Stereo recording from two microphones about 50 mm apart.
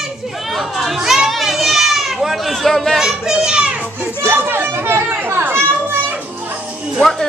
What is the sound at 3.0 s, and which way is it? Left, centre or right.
Children playing, centre.